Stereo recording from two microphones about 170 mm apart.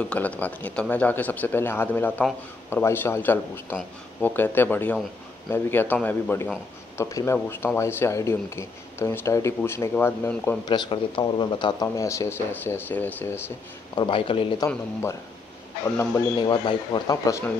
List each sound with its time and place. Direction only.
0.0 s speech: 5° left (ahead or behind)
10.7 s speech: 30° left (ahead or behind); by 13.4 s 10° left (ahead or behind)
13.9 s speech: 30° left (ahead or behind)
14.7 s speech: 15° left (ahead or behind)
16.3 s speech: 25° left (ahead or behind)